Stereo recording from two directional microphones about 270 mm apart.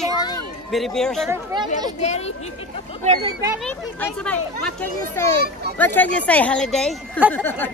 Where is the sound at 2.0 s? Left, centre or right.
Left.